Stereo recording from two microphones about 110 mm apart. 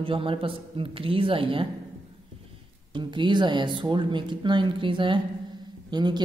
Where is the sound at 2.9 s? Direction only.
45° right (ahead or behind).